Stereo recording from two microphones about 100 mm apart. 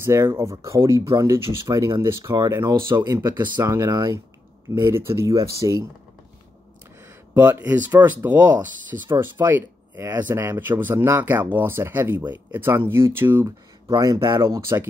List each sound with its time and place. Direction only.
0.0 s speech: 25° right (ahead or behind)
3.0 s speech: 40° right (ahead or behind)
3.6 s speech: 35° right (ahead or behind)
7.3 s speech: 20° right (ahead or behind)
13.8 s speech: 35° right (ahead or behind)